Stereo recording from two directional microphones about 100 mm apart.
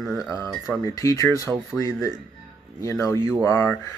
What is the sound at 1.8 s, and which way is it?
Speech, 30° left (ahead or behind).